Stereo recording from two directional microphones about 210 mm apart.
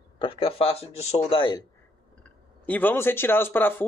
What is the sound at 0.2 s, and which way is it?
Speech, 25° left (ahead or behind).